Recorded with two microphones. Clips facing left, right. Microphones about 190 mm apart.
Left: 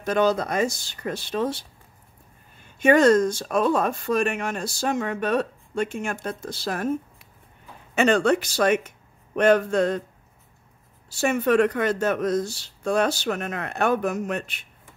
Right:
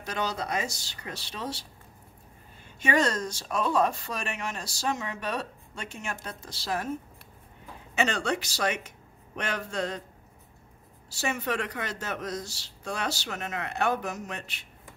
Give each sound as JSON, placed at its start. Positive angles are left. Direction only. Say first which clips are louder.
{"t": 0.0, "sound": "speech", "louder": "left 11 dB", "side_deg": 55}
{"t": 2.8, "sound": "speech", "louder": "left 10 dB", "side_deg": 55}
{"t": 7.9, "sound": "speech", "louder": "left 9 dB", "side_deg": 55}
{"t": 11.1, "sound": "speech", "louder": "left 9 dB", "side_deg": 50}